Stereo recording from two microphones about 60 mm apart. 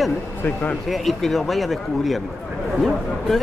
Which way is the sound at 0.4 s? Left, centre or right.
Left.